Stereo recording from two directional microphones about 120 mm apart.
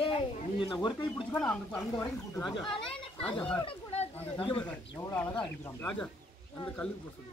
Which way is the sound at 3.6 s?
50° left (ahead or behind).